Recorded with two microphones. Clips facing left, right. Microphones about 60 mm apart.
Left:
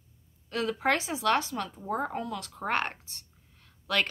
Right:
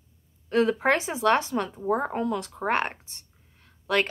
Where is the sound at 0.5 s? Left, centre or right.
Right.